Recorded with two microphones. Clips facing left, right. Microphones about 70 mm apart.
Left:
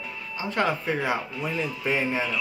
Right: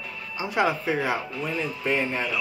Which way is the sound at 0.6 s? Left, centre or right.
Centre.